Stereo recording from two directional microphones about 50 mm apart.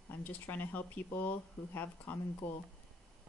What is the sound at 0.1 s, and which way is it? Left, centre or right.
Speech, left.